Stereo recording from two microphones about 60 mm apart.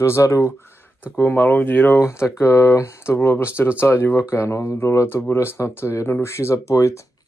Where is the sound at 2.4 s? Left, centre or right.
Left.